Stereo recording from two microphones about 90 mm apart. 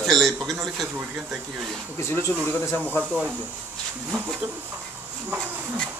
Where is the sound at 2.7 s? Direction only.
15° left (ahead or behind).